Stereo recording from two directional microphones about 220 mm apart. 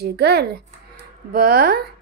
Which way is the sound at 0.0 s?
45° right (ahead or behind).